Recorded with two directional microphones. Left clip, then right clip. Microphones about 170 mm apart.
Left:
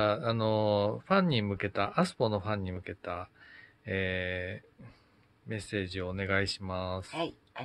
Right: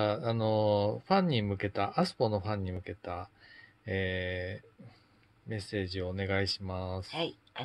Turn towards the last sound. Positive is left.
turn(degrees=10)  # may be behind; listen again after turning